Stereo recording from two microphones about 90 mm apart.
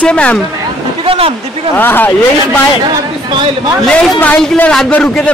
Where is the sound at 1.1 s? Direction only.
90° right.